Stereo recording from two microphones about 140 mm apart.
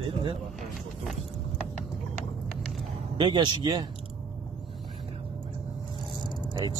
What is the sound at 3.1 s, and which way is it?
Speech, 35° right (ahead or behind).